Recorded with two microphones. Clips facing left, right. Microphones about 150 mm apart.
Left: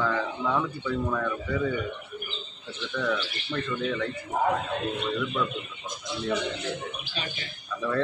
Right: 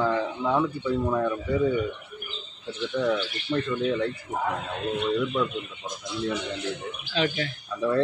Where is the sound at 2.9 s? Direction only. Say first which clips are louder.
Right 3 dB; 20° right (ahead or behind).